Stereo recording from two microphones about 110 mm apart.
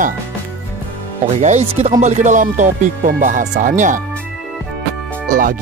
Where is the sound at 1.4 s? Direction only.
90° right.